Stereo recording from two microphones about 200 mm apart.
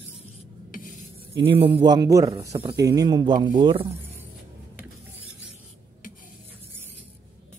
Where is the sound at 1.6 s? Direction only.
25° right (ahead or behind).